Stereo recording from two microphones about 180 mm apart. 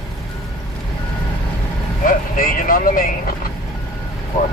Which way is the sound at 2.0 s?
50° left (ahead or behind).